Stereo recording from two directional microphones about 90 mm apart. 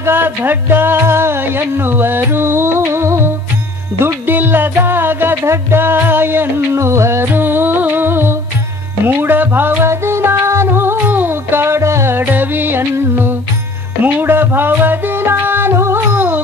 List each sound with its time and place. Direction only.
0.0 s speech: 25° right (ahead or behind)
4.0 s music: 25° right (ahead or behind)